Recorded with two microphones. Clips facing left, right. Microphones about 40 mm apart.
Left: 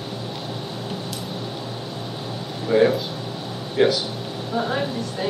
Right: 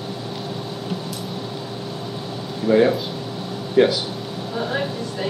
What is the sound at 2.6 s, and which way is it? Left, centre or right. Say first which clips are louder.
Speech: right 2 dB; centre.